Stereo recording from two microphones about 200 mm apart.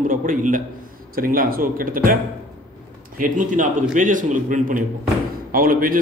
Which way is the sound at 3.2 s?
40° right (ahead or behind).